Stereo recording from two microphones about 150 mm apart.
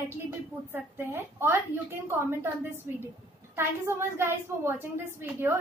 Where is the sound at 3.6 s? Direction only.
15° right (ahead or behind).